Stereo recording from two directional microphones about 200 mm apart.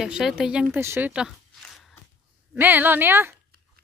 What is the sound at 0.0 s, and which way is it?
Speech, centre (ahead or behind).